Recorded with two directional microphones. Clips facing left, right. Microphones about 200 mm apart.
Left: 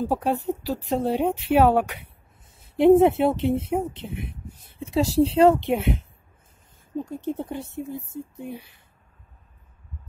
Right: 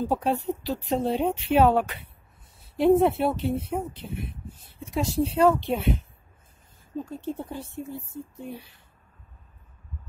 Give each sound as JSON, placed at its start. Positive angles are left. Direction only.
{"t": 0.0, "sound": "speech", "side_deg": 10}
{"t": 7.1, "sound": "speech", "side_deg": 15}